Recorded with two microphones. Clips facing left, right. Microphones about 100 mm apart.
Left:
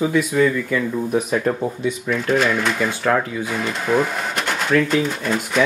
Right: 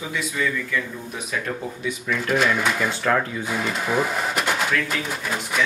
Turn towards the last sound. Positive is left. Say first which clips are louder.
# left 4 dB
turn(degrees=-5)  # may be behind; listen again after turning